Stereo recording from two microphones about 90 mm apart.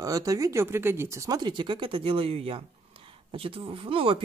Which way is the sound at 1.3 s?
60° right (ahead or behind).